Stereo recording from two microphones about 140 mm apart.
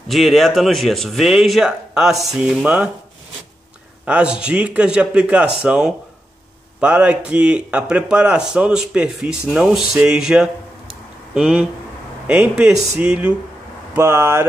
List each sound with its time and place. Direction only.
0.1 s speech: centre (ahead or behind)
4.0 s speech: 10° right (ahead or behind)
13.9 s speech: 20° right (ahead or behind)